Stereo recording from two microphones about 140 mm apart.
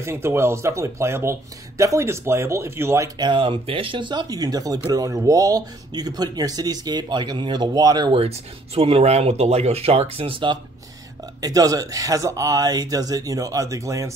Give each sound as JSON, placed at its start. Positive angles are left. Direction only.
{"t": 0.0, "sound": "speech", "side_deg": -15}
{"t": 3.2, "sound": "speech", "side_deg": -35}
{"t": 11.4, "sound": "speech", "side_deg": -25}